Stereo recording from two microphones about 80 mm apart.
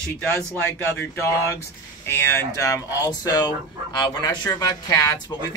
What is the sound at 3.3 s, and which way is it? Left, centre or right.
Speech, left.